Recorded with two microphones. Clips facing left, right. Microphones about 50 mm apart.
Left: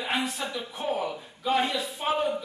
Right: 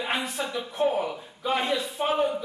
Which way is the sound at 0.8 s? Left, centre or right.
Centre.